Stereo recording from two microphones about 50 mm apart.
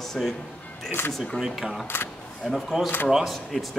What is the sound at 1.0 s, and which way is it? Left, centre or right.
Speech, left.